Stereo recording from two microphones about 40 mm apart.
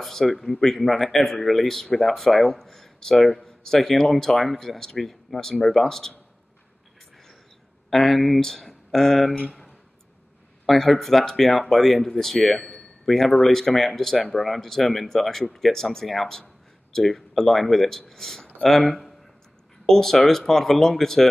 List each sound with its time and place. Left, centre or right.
0.0 s speech: centre
7.9 s speech: centre
10.7 s speech: centre
12.4 s a sound: centre
13.4 s speech: centre